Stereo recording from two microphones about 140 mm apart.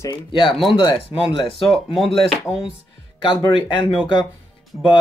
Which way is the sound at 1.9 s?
Centre (ahead or behind).